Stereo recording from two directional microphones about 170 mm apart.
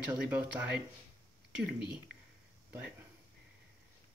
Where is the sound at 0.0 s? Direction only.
5° right (ahead or behind).